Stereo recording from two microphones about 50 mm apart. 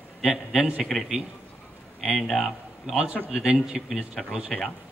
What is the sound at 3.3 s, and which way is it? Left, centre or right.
Speech, centre.